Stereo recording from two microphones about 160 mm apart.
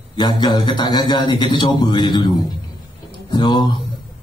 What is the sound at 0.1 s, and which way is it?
Mantra, 25° left (ahead or behind).